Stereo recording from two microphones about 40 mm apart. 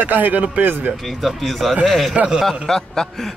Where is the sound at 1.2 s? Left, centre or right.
Centre.